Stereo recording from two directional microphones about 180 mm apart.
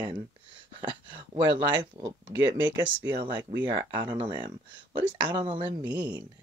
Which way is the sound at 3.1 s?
25° right (ahead or behind).